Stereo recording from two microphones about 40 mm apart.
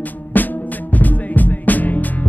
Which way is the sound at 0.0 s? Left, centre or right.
Left.